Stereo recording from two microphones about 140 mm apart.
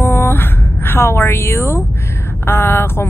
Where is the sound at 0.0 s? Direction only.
15° left (ahead or behind).